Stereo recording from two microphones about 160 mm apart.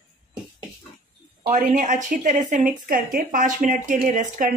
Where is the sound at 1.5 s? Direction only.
55° right (ahead or behind).